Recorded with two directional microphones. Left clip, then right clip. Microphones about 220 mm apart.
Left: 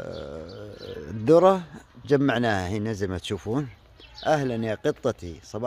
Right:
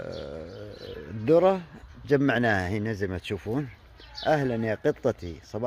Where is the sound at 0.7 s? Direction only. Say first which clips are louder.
Left 2 dB; 20° left (ahead or behind).